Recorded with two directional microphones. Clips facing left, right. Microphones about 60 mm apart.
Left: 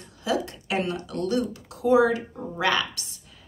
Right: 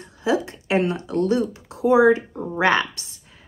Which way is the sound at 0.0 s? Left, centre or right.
Right.